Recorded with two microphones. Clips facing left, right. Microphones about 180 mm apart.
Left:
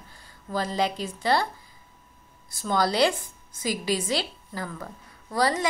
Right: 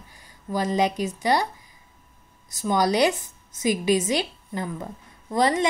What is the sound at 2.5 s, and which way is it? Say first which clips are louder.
A woman's voice: right 2 dB; 15° right (ahead or behind).